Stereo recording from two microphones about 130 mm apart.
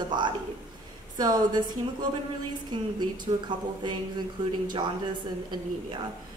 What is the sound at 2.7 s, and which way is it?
Speech, 35° right (ahead or behind).